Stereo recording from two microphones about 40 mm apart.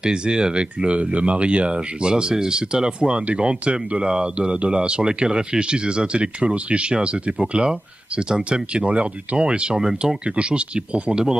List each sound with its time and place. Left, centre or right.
0.0 s speech: right
9.8 s speech: centre
10.2 s speech: right